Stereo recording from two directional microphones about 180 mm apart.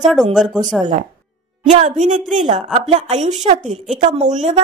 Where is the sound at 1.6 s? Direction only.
40° right (ahead or behind).